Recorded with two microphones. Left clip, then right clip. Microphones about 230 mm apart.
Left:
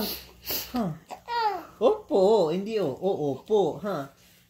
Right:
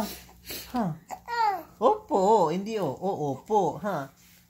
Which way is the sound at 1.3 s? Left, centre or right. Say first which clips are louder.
Right 1 dB; right.